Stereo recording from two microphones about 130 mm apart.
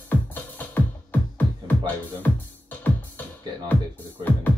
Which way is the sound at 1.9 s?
15° left (ahead or behind).